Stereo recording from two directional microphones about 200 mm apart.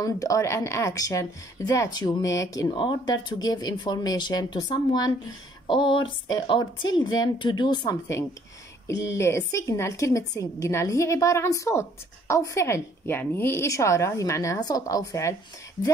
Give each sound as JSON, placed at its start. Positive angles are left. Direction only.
{"t": 0.0, "sound": "a woman's voice", "side_deg": 15}